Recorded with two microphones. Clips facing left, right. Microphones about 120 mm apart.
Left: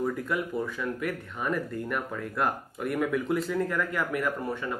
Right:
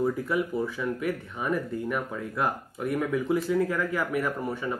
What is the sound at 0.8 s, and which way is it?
Speech, 5° right (ahead or behind).